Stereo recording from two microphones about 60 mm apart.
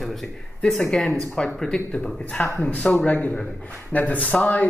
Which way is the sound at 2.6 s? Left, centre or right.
Centre.